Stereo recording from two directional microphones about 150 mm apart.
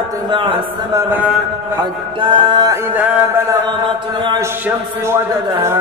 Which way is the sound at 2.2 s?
35° right (ahead or behind).